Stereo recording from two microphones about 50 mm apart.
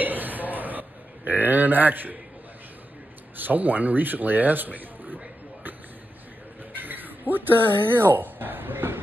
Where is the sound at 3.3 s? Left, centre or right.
Right.